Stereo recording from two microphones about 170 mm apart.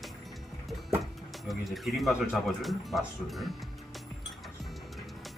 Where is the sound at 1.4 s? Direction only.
Centre (ahead or behind).